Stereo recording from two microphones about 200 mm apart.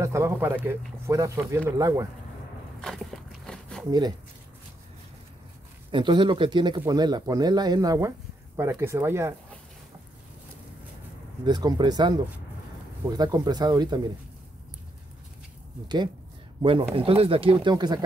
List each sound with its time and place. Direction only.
0.0 s speech: 15° right (ahead or behind)
2.8 s a sound: centre (ahead or behind)
5.9 s speech: 25° right (ahead or behind)
11.4 s speech: 20° right (ahead or behind)
13.2 s speech: 20° right (ahead or behind)
16.6 s speech: 25° right (ahead or behind)